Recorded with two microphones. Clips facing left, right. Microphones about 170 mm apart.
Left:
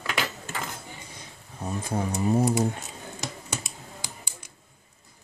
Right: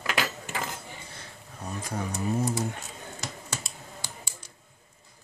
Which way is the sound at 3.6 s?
20° left (ahead or behind).